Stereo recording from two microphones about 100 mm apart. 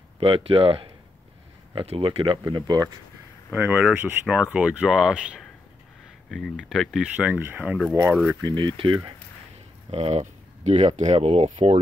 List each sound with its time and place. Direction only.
0.2 s speech: 65° right (ahead or behind)
2.5 s speech: 45° right (ahead or behind)
3.5 s speech: 20° right (ahead or behind)
6.3 s speech: 5° left (ahead or behind)
7.2 s speech: 15° right (ahead or behind)
7.9 s speech: 30° right (ahead or behind)
8.4 s speech: 45° right (ahead or behind)
9.8 s speech: 90° right